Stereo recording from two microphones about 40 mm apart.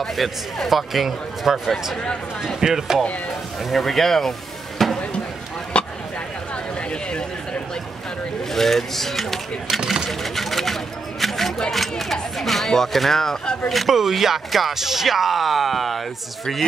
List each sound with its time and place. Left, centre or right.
0.0 s speech: centre
3.7 s speech: centre
5.7 s a sound: left
8.5 s speech: centre
13.7 s speech: centre